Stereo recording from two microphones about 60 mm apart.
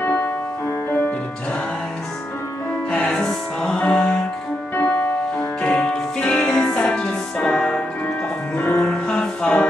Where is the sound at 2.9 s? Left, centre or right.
Centre.